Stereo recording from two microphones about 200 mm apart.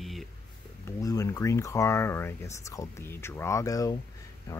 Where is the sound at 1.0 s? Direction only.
15° left (ahead or behind).